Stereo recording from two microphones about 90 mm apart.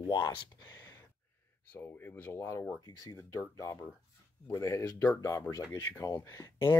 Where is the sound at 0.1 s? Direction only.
50° left (ahead or behind).